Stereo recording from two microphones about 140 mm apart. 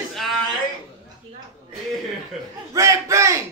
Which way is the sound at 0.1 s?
Centre (ahead or behind).